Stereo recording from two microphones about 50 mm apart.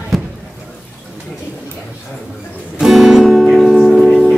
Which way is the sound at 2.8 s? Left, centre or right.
Centre.